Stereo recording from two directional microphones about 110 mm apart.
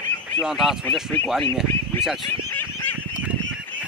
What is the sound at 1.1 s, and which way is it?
Speech, 15° left (ahead or behind).